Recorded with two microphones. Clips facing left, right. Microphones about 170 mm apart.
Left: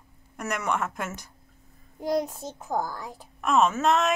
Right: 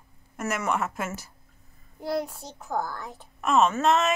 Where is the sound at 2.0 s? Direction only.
15° left (ahead or behind).